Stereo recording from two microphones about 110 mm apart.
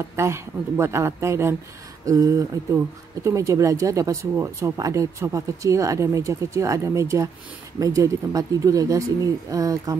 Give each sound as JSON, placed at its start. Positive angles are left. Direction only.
{"t": 0.1, "sound": "speech", "side_deg": -25}